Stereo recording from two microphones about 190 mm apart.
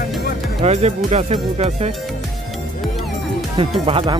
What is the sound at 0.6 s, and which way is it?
Speech, 35° right (ahead or behind).